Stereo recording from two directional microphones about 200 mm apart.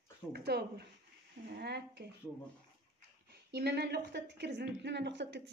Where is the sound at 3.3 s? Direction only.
55° right (ahead or behind).